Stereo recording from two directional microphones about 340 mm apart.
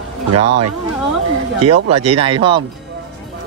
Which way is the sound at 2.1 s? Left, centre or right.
Centre.